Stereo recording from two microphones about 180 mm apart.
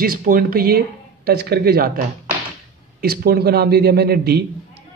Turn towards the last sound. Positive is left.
turn(degrees=-60)  # may be behind; listen again after turning